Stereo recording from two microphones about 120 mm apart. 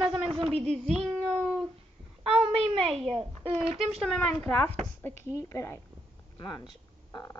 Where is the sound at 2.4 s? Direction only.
60° right (ahead or behind).